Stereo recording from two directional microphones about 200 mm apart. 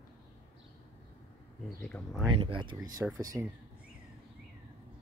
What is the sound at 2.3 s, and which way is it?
Speech, 25° right (ahead or behind).